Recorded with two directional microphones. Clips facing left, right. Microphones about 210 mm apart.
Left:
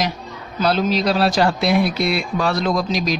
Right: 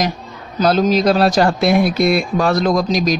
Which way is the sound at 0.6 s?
40° right (ahead or behind).